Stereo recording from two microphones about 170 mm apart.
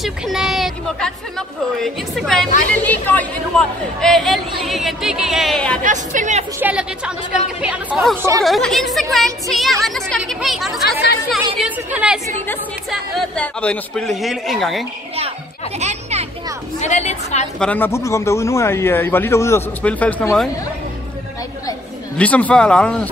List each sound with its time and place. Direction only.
0.0 s a sound: centre (ahead or behind)
1.8 s speech: centre (ahead or behind)
5.9 s a woman's voice: 45° right (ahead or behind)
6.6 s a woman's voice: 5° right (ahead or behind)
8.2 s a woman's voice: 20° right (ahead or behind)
8.5 s speech: centre (ahead or behind)
15.8 s a child's voice: 40° right (ahead or behind)
16.8 s a woman's voice: 40° left (ahead or behind)
17.6 s a man's voice: 10° left (ahead or behind)
22.1 s a man's voice: 10° left (ahead or behind)